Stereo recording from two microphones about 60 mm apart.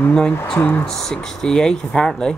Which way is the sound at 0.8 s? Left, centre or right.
Centre.